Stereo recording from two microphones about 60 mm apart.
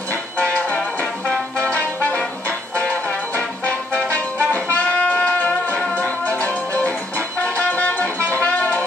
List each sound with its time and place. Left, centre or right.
0.1 s music: left